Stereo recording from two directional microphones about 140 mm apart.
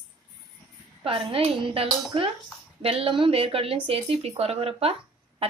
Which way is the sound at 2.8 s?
45° right (ahead or behind).